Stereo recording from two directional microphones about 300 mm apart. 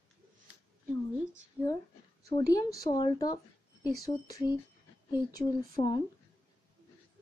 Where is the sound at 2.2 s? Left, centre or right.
Centre.